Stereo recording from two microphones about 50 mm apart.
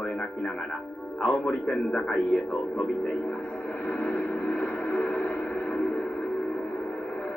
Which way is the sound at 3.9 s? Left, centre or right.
Centre.